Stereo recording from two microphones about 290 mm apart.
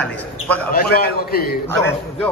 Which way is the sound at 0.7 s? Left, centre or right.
Left.